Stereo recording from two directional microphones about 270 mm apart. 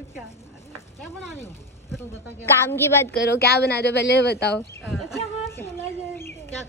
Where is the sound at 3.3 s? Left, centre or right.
Left.